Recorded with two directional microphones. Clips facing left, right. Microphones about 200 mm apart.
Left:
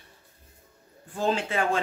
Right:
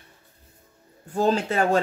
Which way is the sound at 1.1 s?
40° right (ahead or behind).